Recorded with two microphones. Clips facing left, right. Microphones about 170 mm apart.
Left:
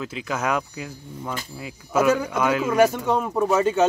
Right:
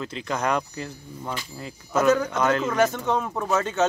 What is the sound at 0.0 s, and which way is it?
Speech, 5° left (ahead or behind).